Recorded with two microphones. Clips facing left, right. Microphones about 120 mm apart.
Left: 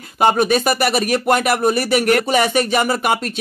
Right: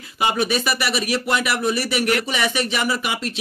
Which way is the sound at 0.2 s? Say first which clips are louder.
Left 6 dB; 45° left (ahead or behind).